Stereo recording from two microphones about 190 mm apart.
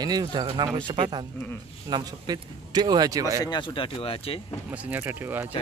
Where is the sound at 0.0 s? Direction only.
20° right (ahead or behind).